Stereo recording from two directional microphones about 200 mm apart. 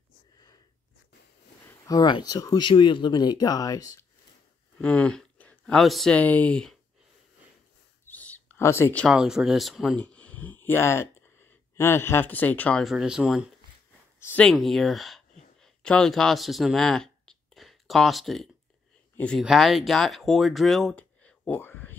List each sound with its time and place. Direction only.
1.9 s speech: 20° left (ahead or behind)
4.7 s speech: 5° left (ahead or behind)
8.1 s speech: 10° left (ahead or behind)